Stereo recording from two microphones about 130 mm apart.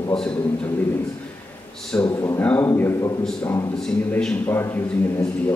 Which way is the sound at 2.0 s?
25° left (ahead or behind).